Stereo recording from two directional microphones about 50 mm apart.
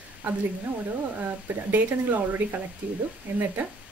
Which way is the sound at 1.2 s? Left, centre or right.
Right.